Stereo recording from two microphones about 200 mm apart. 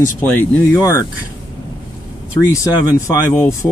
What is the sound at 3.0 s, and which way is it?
Speech, 15° left (ahead or behind).